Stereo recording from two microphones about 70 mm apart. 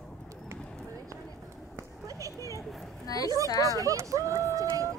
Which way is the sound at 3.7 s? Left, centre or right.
Right.